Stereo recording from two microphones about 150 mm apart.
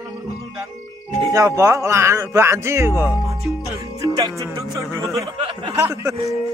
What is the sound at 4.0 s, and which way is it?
Music, 25° right (ahead or behind).